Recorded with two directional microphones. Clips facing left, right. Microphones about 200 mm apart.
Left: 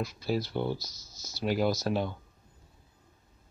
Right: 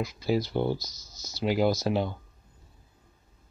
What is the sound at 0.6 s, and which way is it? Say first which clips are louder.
Speech: right 4 dB; 40° right (ahead or behind).